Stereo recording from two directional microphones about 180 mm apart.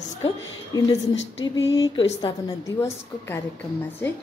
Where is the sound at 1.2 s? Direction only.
90° left.